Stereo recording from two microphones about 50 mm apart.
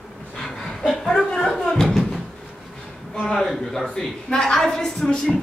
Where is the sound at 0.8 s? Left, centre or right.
Centre.